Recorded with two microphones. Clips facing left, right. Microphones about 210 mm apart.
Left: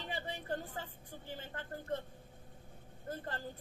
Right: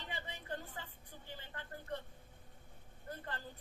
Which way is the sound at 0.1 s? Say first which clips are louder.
Left 5 dB; 40° left (ahead or behind).